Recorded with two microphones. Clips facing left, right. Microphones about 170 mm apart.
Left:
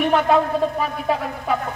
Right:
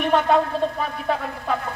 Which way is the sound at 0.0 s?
Centre (ahead or behind).